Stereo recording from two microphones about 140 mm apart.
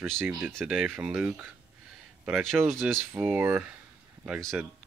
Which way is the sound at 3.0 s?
15° right (ahead or behind).